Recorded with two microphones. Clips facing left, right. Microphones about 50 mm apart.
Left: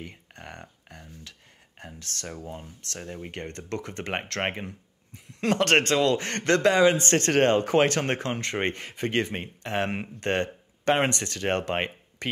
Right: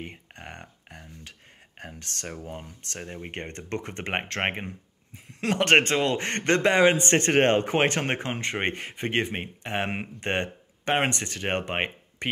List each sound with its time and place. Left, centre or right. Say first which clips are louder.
0.0 s speech: right 2 dB; right
5.6 s a man's voice: right 2 dB; right